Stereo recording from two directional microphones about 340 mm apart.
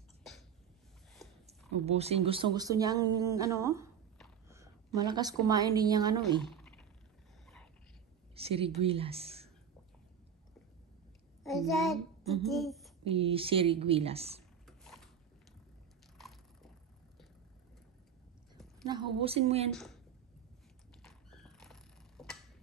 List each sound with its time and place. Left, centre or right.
1.1 s a sound: centre
1.9 s speech: centre
6.4 s a sound: centre
8.4 s a woman's voice: centre
11.4 s child singing: centre
12.4 s speech: centre
13.0 s a woman's voice: centre
14.7 s mechanisms: centre
16.2 s biting: centre
18.9 s a woman's voice: centre
21.0 s a sound: centre